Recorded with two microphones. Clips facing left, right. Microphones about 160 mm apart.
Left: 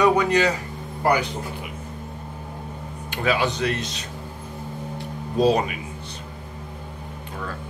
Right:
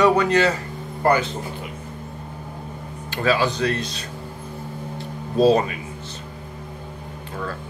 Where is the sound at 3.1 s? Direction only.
15° left (ahead or behind).